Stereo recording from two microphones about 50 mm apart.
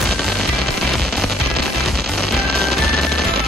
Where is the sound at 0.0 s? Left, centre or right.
Centre.